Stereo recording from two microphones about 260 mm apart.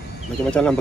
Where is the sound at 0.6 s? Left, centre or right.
Centre.